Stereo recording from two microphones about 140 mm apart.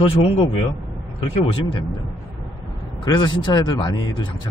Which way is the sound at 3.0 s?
30° left (ahead or behind).